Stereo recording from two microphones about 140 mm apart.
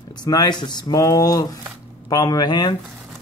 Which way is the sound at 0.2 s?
30° left (ahead or behind).